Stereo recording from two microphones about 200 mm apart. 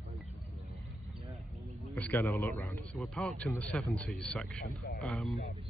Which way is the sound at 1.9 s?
10° left (ahead or behind).